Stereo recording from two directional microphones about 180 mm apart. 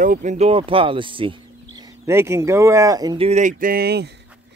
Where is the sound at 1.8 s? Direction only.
15° right (ahead or behind).